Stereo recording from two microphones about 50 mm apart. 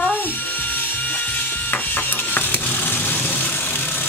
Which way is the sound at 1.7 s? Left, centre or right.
Left.